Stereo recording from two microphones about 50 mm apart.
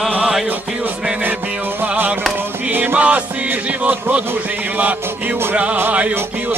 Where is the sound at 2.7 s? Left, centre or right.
Right.